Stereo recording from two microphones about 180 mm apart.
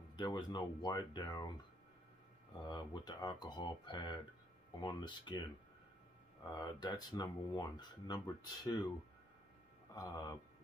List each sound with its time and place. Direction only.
0.1 s speech: 25° left (ahead or behind)
2.6 s speech: 25° left (ahead or behind)
6.5 s speech: 25° left (ahead or behind)
9.9 s speech: 20° left (ahead or behind)